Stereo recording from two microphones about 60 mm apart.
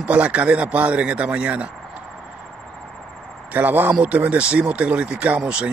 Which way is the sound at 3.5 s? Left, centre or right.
Right.